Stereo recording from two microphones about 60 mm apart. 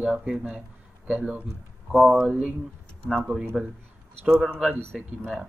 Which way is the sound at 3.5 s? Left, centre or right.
Centre.